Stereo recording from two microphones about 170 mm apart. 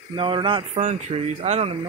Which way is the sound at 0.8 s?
40° right (ahead or behind).